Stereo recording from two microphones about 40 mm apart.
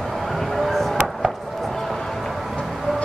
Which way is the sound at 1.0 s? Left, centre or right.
Centre.